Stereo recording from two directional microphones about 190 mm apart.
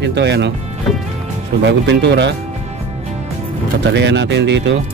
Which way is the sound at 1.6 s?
65° right (ahead or behind).